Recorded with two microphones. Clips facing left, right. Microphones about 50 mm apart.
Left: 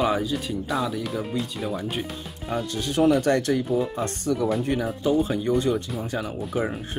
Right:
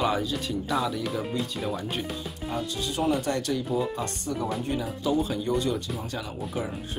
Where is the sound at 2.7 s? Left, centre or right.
Left.